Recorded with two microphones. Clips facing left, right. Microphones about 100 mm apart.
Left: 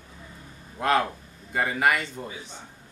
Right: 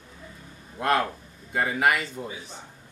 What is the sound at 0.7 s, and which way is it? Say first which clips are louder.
A man's voice: left 1 dB; centre (ahead or behind).